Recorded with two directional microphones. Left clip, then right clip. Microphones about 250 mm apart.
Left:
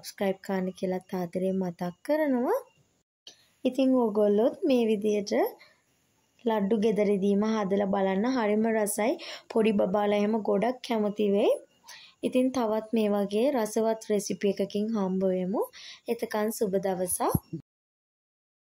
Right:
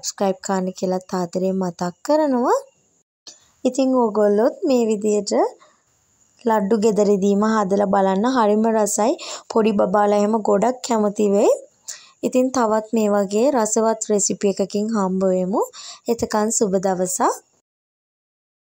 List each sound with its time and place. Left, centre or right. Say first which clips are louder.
0.0 s speech: right 9 dB; right
3.3 s speech: right 8 dB; right